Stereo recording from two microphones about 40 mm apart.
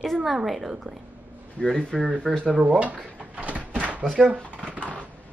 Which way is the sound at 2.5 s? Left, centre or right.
Right.